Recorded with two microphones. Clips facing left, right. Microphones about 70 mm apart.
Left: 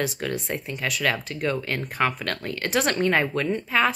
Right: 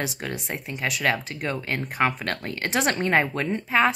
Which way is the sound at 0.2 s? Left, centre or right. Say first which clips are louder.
Left 3 dB; right.